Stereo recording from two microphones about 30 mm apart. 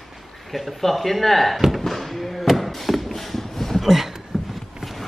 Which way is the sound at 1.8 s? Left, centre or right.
Centre.